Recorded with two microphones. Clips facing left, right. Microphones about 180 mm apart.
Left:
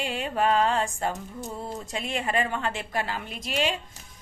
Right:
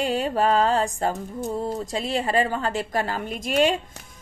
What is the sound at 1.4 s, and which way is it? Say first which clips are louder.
A woman's voice: right 9 dB; 35° right (ahead or behind).